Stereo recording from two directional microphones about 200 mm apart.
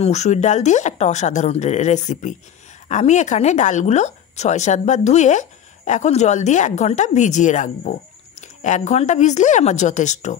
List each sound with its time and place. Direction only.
0.0 s speech: 35° left (ahead or behind)